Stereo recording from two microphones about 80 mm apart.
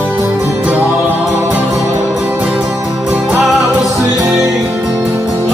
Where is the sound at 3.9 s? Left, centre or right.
Right.